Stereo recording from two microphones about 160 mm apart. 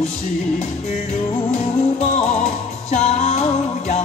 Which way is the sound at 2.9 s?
45° left (ahead or behind).